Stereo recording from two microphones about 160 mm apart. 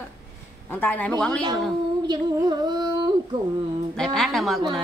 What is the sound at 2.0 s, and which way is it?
Music, 25° right (ahead or behind).